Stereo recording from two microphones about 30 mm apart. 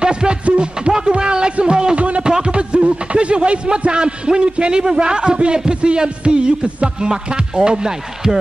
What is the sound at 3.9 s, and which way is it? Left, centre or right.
A man's voice, right.